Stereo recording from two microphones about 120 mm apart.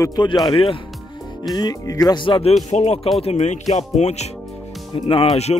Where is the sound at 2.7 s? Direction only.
60° left (ahead or behind).